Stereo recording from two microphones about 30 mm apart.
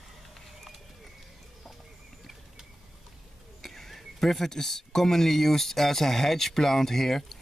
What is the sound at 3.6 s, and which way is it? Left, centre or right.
Speech, centre.